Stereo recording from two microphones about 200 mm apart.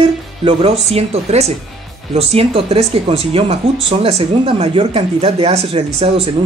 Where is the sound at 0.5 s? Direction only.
25° right (ahead or behind).